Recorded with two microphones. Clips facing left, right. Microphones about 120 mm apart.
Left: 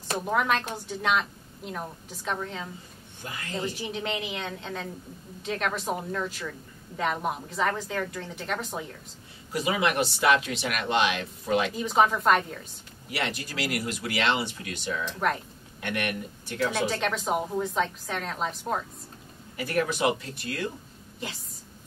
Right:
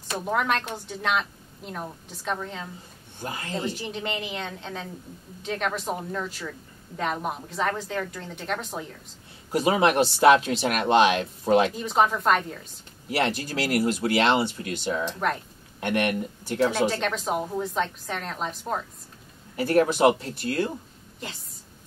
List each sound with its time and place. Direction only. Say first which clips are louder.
0.2 s a woman's voice: right 1 dB; centre (ahead or behind)
3.2 s speech: right 5 dB; 35° right (ahead or behind)
3.5 s a woman's voice: even; centre (ahead or behind)
9.5 s speech: right 5 dB; 35° right (ahead or behind)
11.7 s a woman's voice: even; centre (ahead or behind)
13.1 s speech: right 6 dB; 35° right (ahead or behind)
16.7 s a woman's voice: right 3 dB; centre (ahead or behind)
19.5 s speech: right 6 dB; 35° right (ahead or behind)
21.2 s a woman's voice: left 1 dB; centre (ahead or behind)